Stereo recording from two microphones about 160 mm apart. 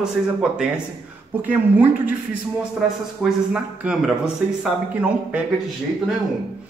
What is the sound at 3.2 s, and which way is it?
Speech, 5° right (ahead or behind).